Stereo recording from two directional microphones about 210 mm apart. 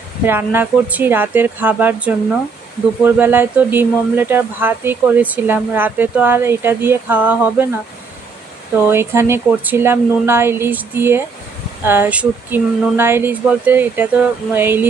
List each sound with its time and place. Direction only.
0.2 s speech: 10° right (ahead or behind)
8.7 s speech: 10° right (ahead or behind)